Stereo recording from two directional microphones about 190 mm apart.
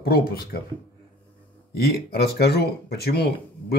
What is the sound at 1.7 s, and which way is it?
Speech, 55° left (ahead or behind).